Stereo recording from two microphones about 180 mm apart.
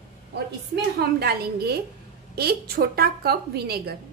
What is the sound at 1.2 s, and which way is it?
A woman's voice, 60° right (ahead or behind).